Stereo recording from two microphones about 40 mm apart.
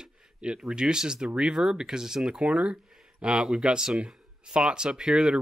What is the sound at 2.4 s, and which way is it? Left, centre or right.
Speech, right.